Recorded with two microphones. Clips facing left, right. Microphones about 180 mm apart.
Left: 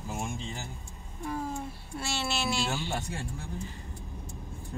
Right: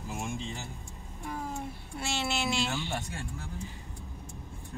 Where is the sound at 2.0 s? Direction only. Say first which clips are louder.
Even; 15° right (ahead or behind).